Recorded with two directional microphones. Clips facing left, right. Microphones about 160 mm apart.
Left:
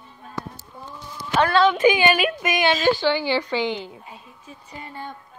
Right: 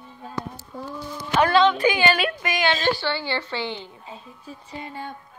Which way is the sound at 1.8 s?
15° left (ahead or behind).